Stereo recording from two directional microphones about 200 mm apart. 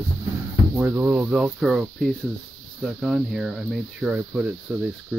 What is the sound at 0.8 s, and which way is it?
Speech, 10° right (ahead or behind).